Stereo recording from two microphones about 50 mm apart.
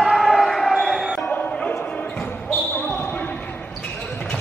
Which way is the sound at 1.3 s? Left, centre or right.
Left.